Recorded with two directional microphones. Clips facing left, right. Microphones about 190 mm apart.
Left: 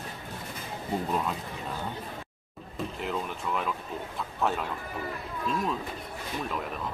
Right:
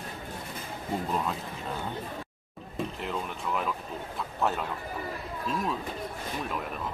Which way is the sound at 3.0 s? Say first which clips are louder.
Left 1 dB; centre (ahead or behind).